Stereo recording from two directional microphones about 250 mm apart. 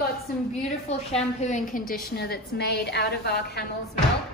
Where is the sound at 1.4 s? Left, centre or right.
Left.